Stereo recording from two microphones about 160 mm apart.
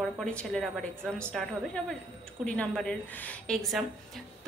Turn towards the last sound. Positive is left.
turn(degrees=5)  # may be behind; listen again after turning